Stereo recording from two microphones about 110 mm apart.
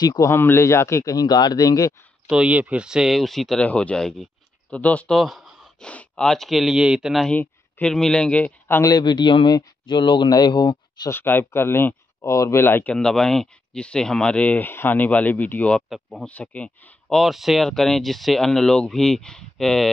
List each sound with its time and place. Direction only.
0.0 s a man's voice: 40° left (ahead or behind)
0.3 s a man's voice: 20° left (ahead or behind)
2.2 s speech: 10° right (ahead or behind)
3.6 s speech: 10° left (ahead or behind)
5.1 s a sound: centre (ahead or behind)
5.8 s speech: 10° left (ahead or behind)
7.2 s speech: 10° left (ahead or behind)
8.8 s a man's voice: 40° left (ahead or behind)
11.1 s speech: 20° left (ahead or behind)
12.9 s speech: 5° left (ahead or behind)
15.9 s speech: centre (ahead or behind)
16.3 s speech: 15° left (ahead or behind)